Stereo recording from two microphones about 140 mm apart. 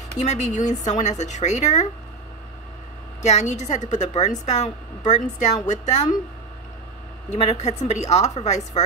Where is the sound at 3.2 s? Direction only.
55° left (ahead or behind).